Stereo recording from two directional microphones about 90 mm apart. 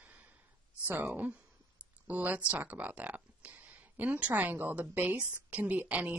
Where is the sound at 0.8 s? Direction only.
20° right (ahead or behind).